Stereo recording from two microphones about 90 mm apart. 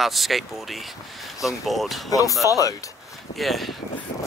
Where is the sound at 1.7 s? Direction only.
Centre (ahead or behind).